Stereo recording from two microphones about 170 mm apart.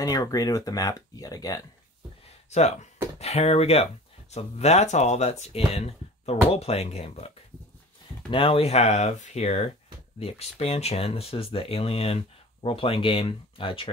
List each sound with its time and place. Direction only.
0.0 s speech: 20° left (ahead or behind)
2.5 s speech: 40° left (ahead or behind)